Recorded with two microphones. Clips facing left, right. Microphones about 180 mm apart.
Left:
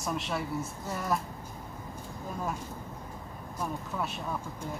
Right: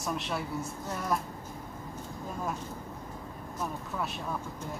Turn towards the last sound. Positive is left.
turn(degrees=0)  # may be behind; listen again after turning